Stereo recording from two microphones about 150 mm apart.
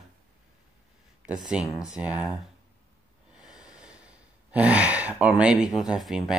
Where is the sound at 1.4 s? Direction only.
5° right (ahead or behind).